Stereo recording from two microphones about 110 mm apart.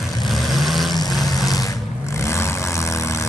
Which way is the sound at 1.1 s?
Centre (ahead or behind).